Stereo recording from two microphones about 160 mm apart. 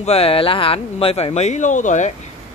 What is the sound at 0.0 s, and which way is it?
Speech, 35° left (ahead or behind).